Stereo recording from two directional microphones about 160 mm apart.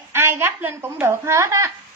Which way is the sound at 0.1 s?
15° right (ahead or behind).